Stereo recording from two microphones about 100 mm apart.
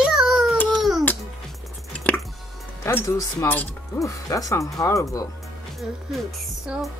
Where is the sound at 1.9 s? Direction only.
10° left (ahead or behind).